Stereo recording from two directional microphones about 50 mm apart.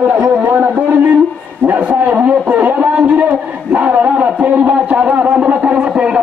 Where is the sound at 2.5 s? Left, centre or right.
Right.